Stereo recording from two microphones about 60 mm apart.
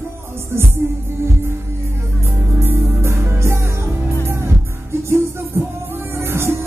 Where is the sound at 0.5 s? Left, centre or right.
Right.